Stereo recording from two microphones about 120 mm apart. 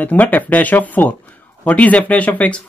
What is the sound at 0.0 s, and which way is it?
Speech, 15° left (ahead or behind).